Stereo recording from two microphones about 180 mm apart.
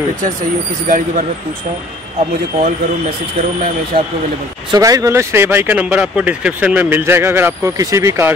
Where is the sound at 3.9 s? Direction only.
55° right (ahead or behind).